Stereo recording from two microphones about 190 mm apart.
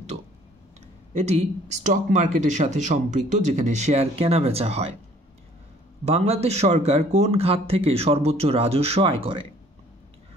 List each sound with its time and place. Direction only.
1.1 s speech: 35° right (ahead or behind)
6.0 s speech: 30° right (ahead or behind)